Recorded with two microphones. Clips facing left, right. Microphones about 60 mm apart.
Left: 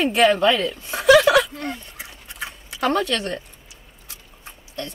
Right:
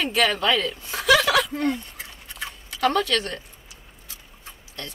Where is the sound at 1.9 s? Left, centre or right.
Centre.